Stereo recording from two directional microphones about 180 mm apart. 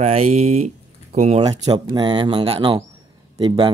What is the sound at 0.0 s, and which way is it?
Speech, 35° right (ahead or behind).